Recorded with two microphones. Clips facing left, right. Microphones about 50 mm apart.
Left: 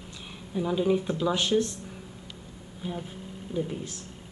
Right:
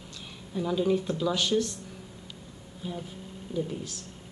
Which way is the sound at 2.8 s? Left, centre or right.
Centre.